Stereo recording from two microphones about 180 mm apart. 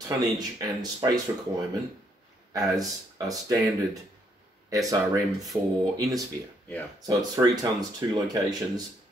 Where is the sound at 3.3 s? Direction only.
20° right (ahead or behind).